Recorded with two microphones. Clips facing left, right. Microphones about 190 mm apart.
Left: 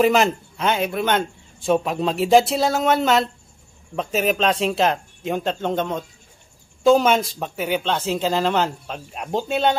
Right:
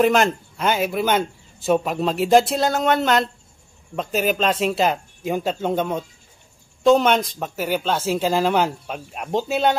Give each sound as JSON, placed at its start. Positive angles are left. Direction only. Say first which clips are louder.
{"t": 0.0, "sound": "a man's voice", "louder": "even", "side_deg": 0}